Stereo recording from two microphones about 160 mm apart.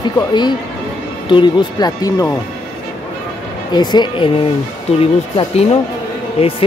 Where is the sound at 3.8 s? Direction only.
25° left (ahead or behind).